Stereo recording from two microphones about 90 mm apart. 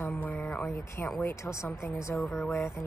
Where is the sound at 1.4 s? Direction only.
35° left (ahead or behind).